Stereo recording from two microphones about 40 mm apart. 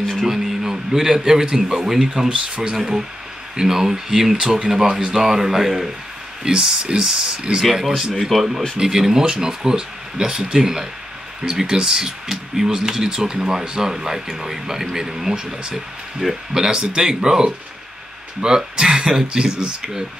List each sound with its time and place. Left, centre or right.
0.2 s speech: centre
2.2 s speech: right
3.5 s speech: centre
8.7 s speech: centre
16.7 s speech: centre